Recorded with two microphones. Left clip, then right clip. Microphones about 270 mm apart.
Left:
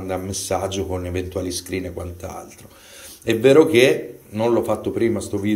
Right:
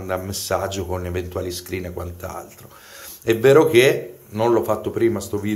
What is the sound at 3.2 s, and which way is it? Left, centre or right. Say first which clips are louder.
Speech: even; centre.